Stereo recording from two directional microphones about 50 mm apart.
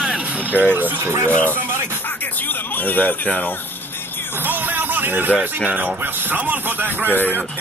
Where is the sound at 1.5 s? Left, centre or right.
Right.